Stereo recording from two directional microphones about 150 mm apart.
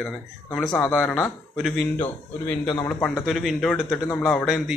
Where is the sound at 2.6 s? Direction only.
30° left (ahead or behind).